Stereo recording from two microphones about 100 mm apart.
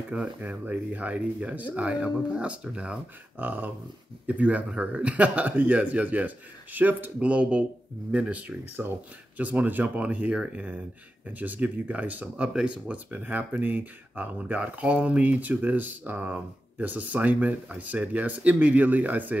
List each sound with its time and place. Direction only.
0.1 s speech: 15° right (ahead or behind)